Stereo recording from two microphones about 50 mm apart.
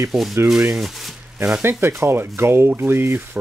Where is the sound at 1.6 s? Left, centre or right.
Right.